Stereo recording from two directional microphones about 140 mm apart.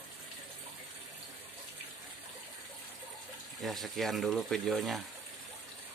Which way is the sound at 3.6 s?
Centre (ahead or behind).